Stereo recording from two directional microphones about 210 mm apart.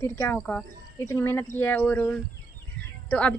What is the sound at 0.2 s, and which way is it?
Speech, 10° left (ahead or behind).